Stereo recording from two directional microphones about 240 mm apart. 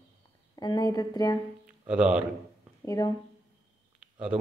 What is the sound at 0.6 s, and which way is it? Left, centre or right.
Speech, centre.